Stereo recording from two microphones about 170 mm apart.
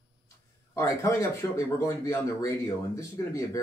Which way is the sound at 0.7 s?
15° left (ahead or behind).